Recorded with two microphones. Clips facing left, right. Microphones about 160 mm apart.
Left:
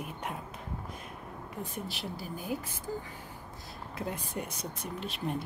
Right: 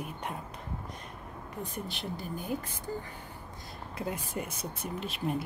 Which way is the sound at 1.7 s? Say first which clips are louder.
Right 2 dB; 5° left (ahead or behind).